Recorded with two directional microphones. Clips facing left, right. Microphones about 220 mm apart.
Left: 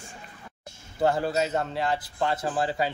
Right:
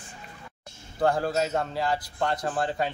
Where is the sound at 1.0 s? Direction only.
5° left (ahead or behind).